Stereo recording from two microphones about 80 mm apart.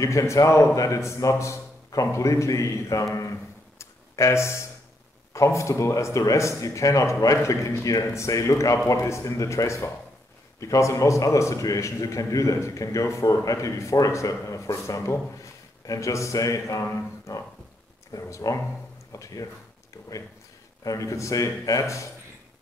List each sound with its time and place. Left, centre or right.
0.0 s a man's voice: left
3.2 s music: left
5.3 s a man's voice: left